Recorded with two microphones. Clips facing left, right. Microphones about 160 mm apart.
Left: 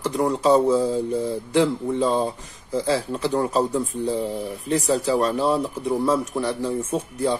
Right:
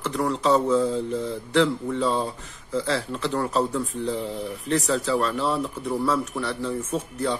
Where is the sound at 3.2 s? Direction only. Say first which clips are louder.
Left 2 dB; 10° left (ahead or behind).